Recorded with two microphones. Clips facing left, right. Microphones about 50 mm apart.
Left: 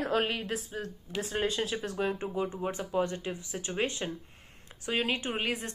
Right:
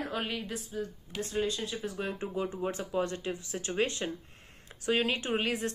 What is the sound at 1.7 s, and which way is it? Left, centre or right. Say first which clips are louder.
Speech: left 2 dB; left.